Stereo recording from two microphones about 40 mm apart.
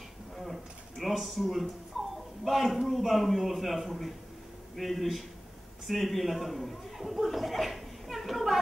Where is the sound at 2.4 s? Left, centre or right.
Centre.